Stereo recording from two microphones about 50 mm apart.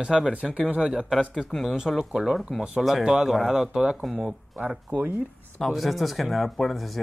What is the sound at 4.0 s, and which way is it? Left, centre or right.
Speech, centre.